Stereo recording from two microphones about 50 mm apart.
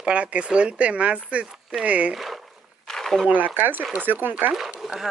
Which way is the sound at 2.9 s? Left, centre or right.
Centre.